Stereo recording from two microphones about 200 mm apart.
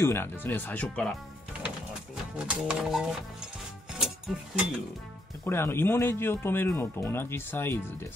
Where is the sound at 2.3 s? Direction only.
5° right (ahead or behind).